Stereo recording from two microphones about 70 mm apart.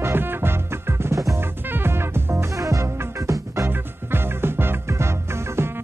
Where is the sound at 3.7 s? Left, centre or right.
Right.